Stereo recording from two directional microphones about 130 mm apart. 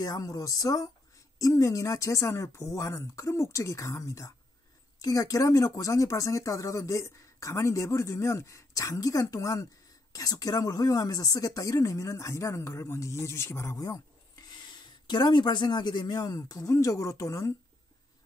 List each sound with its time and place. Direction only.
0.0 s speech: 25° left (ahead or behind)